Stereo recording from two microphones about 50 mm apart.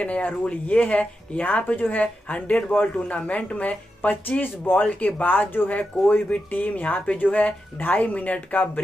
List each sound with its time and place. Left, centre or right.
0.0 s speech: left